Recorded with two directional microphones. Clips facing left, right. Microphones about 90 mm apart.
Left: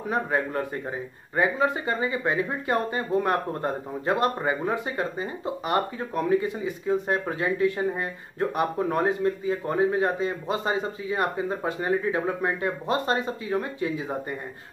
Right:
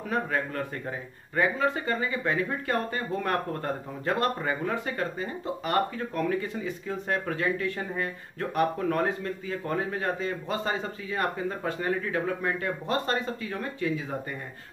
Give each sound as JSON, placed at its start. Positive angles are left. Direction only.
{"t": 0.1, "sound": "speech", "side_deg": 20}